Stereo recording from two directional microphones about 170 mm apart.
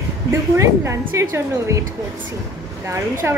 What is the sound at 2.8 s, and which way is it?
Speech, 15° right (ahead or behind).